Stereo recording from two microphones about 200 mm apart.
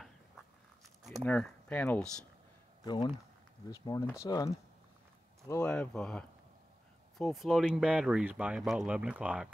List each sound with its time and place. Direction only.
1.2 s speech: 5° left (ahead or behind)
2.8 s speech: 20° left (ahead or behind); by 9.5 s 5° right (ahead or behind)